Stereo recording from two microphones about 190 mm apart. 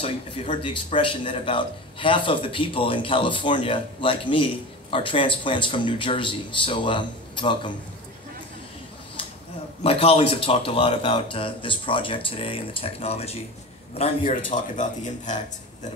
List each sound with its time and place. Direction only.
0.0 s speech: 30° left (ahead or behind)
9.8 s speech: 30° left (ahead or behind)